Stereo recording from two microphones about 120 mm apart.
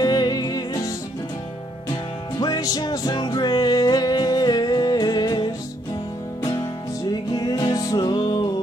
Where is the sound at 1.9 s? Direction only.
50° left (ahead or behind).